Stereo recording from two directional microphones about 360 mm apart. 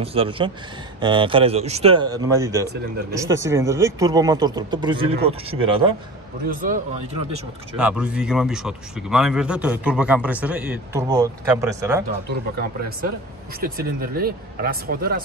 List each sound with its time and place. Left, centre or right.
0.0 s speech: centre
7.7 s a man's voice: centre
13.6 s speech: right